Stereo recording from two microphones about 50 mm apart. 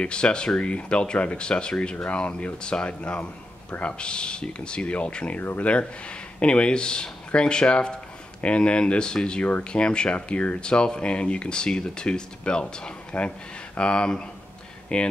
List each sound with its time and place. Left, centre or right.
0.0 s speech: centre